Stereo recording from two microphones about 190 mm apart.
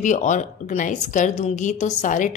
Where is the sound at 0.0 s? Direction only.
40° left (ahead or behind).